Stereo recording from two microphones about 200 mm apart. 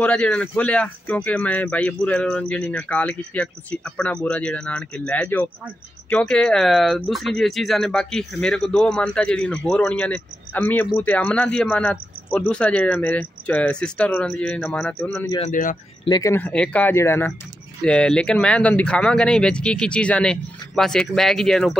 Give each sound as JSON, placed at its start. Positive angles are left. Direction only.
{"t": 0.0, "sound": "speech", "side_deg": 5}
{"t": 15.3, "sound": "speech", "side_deg": 35}
{"t": 16.1, "sound": "speech", "side_deg": 15}